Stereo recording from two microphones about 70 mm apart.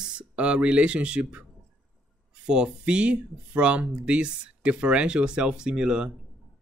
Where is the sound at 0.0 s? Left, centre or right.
Centre.